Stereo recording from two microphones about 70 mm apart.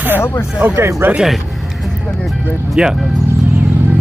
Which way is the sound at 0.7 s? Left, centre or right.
Right.